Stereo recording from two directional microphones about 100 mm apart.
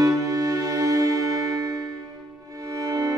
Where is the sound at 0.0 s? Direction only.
35° right (ahead or behind).